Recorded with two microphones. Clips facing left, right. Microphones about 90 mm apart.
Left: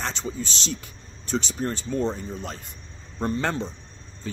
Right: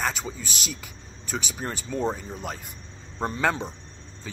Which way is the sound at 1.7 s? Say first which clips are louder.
Right 1 dB; 20° right (ahead or behind).